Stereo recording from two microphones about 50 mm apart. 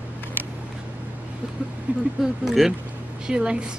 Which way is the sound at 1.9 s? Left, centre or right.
Right.